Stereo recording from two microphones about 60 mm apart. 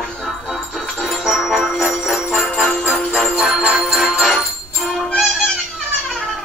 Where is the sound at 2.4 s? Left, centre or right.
Centre.